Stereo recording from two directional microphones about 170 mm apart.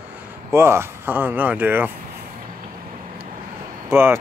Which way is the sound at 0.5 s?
15° right (ahead or behind).